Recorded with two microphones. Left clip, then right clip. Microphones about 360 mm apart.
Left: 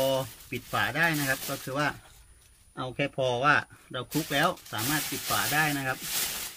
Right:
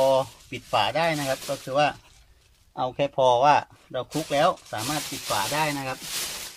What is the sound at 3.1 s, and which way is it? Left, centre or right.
Speech, right.